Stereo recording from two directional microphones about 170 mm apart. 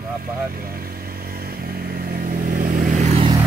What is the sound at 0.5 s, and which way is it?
Vehicle, 60° right (ahead or behind).